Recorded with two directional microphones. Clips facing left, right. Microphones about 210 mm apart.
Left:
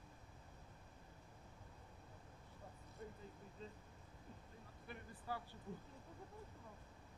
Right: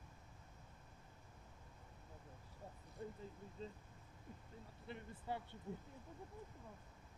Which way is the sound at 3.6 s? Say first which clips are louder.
Right 4 dB; 30° right (ahead or behind).